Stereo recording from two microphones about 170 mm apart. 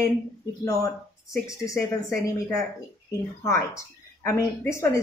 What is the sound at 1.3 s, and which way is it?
Speech, 20° left (ahead or behind).